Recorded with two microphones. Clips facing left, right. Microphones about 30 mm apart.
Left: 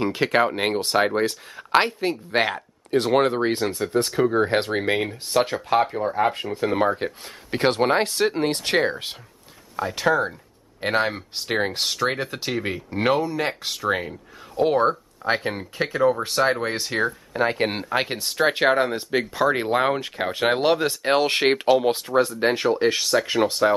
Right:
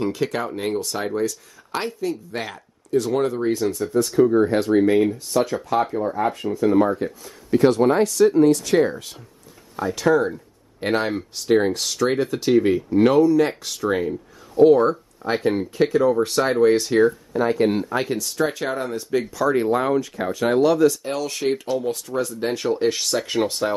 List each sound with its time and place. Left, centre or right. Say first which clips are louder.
0.0 s speech: left 3 dB; left
2.3 s speech: left 8 dB; left
9.8 s speech: right 2 dB; left
11.1 s speech: right 6 dB; left
12.9 s speech: right 6 dB; left
15.2 s speech: right 3 dB; left
17.0 s speech: right 4 dB; left; by 23.7 s centre